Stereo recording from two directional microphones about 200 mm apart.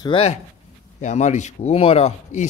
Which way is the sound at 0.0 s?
30° left (ahead or behind).